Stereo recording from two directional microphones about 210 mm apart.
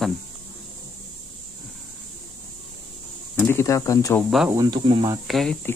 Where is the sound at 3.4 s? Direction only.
10° left (ahead or behind).